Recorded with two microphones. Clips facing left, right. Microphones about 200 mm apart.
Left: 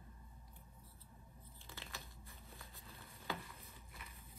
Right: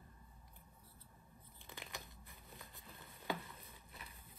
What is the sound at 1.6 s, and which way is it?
Biting, 15° right (ahead or behind).